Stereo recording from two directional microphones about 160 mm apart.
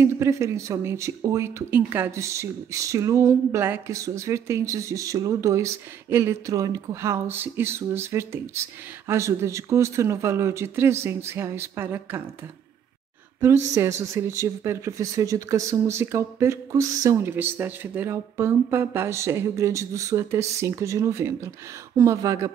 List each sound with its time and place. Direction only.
0.0 s speech: 20° right (ahead or behind)
13.7 s speech: 15° right (ahead or behind)